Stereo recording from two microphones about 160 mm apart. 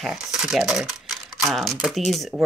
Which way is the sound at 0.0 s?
Centre (ahead or behind).